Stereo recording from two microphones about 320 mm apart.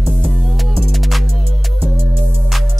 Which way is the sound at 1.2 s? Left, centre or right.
Left.